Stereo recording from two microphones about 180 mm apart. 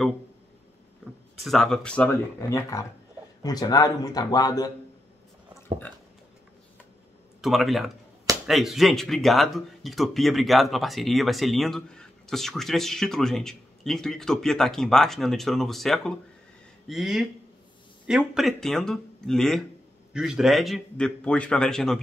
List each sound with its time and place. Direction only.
1.4 s speech: centre (ahead or behind); by 4.6 s 20° left (ahead or behind)
7.4 s speech: centre (ahead or behind)